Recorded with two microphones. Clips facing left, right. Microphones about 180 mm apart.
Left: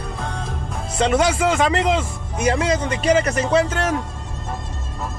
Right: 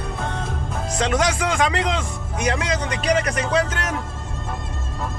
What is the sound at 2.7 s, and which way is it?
Speech, 30° left (ahead or behind).